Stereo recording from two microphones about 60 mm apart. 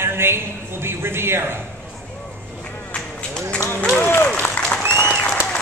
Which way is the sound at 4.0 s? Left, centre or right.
Left.